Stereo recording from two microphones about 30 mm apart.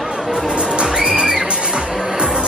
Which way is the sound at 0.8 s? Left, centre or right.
Right.